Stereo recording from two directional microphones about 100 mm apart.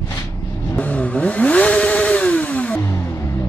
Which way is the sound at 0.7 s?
15° left (ahead or behind).